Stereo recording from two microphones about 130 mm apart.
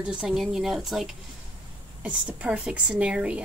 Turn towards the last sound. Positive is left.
turn(degrees=-10)  # may be behind; listen again after turning